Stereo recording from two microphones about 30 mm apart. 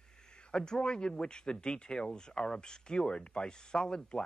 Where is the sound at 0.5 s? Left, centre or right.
Left.